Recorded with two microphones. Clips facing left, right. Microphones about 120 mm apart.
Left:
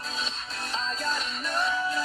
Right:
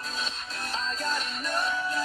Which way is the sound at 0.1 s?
45° right (ahead or behind).